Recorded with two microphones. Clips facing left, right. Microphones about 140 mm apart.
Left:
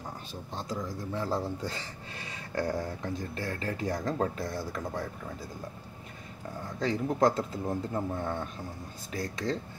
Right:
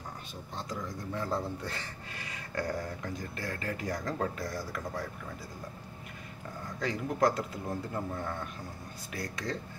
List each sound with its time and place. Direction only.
1.1 s speech: 5° left (ahead or behind)
2.5 s speech: 30° left (ahead or behind)
6.8 s speech: 30° left (ahead or behind)